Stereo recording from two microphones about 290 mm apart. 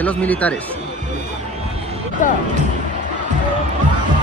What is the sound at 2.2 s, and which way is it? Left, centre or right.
Speech, left.